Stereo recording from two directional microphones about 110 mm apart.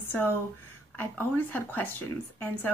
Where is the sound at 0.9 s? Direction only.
15° left (ahead or behind).